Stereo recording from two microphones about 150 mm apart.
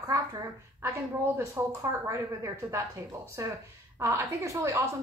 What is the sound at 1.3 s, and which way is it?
A woman's voice, 20° right (ahead or behind).